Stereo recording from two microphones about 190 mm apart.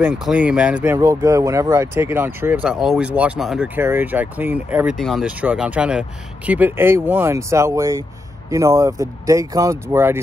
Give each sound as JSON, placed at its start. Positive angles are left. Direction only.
{"t": 0.0, "sound": "speech", "side_deg": -5}